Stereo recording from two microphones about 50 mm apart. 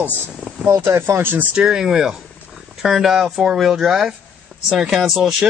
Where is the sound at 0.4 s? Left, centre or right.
Right.